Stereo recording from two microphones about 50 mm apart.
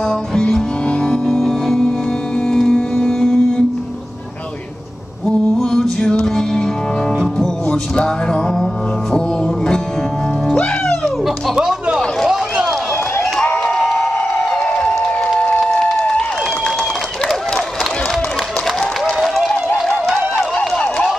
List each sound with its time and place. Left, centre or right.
0.3 s music: centre
5.2 s music: centre
10.5 s music: left
11.5 s music: centre
12.3 s run: centre
13.6 s a sound: centre
15.3 s music: left
16.0 s a sound: left
19.2 s run: centre
20.7 s run: centre